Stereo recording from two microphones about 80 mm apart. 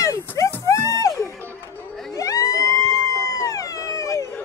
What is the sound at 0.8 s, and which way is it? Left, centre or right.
Music, left.